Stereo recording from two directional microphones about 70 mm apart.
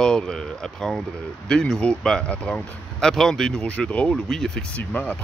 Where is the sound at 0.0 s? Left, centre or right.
Centre.